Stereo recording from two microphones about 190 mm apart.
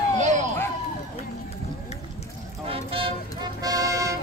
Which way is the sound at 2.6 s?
30° right (ahead or behind).